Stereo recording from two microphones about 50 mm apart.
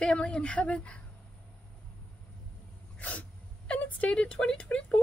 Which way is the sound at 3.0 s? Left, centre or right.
Left.